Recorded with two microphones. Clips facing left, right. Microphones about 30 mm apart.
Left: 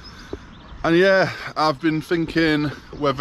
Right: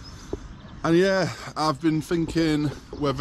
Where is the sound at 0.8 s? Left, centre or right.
Left.